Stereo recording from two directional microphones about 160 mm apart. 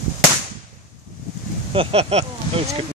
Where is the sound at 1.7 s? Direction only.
35° right (ahead or behind).